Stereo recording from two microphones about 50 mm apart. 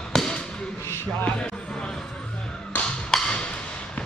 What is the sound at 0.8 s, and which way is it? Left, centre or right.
Music, left.